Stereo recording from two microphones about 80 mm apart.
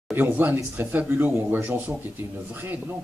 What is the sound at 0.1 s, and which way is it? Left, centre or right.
Speech, right.